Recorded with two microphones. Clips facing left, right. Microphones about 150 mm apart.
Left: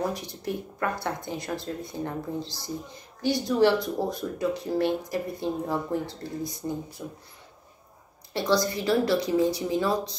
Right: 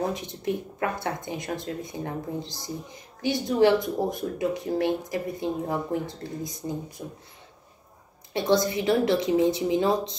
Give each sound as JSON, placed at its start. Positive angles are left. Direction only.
{"t": 0.9, "sound": "speech", "side_deg": -15}
{"t": 8.3, "sound": "speech", "side_deg": -20}